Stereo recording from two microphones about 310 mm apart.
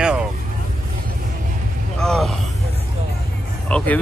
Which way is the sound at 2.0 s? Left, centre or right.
Centre.